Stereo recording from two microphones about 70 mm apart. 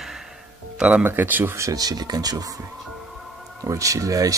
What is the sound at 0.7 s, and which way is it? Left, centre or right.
Speech, centre.